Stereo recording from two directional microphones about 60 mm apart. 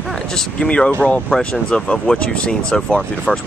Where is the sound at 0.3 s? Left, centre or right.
Centre.